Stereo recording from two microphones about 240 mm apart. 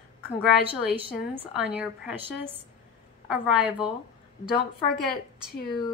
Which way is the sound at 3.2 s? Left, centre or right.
Centre.